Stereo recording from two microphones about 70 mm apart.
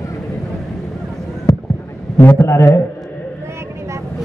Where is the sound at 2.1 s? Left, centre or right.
Left.